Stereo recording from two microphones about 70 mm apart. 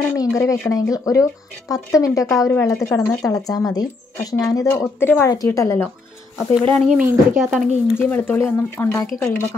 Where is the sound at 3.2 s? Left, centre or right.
Left.